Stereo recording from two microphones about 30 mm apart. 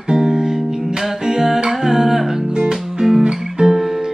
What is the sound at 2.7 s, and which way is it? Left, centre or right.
Music, centre.